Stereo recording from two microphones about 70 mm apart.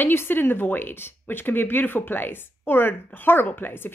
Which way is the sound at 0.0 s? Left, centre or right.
Left.